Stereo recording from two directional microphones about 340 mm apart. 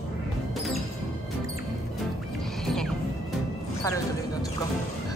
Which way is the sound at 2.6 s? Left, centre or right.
Centre.